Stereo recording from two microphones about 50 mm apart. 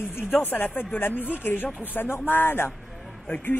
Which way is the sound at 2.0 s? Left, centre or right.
Left.